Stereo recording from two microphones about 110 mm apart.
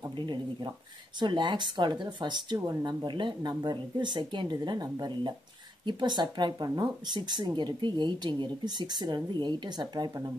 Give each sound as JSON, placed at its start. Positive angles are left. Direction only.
{"t": 0.1, "sound": "speech", "side_deg": -45}